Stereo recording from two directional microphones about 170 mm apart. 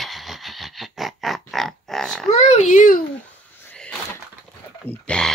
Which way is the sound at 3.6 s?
10° left (ahead or behind).